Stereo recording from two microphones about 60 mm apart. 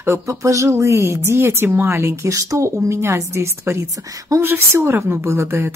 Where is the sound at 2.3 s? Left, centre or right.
Right.